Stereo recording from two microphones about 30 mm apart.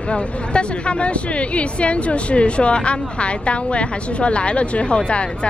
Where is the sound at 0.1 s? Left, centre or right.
Left.